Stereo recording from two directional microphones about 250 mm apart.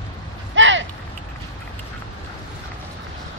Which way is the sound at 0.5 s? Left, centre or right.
Right.